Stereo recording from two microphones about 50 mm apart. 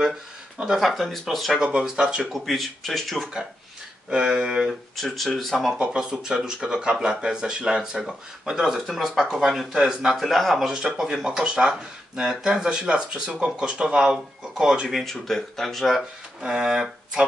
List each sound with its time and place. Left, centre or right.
0.7 s speech: centre
1.6 s speech: centre
2.2 s speech: centre
4.1 s speech: centre
4.9 s speech: centre
5.8 s speech: centre
10.1 s speech: centre
10.7 s speech: centre
14.9 s speech: centre
16.3 s speech: centre